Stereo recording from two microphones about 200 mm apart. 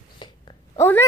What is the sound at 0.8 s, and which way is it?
Speech, 10° left (ahead or behind).